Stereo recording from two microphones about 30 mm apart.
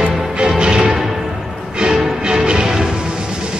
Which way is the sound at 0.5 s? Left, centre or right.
Right.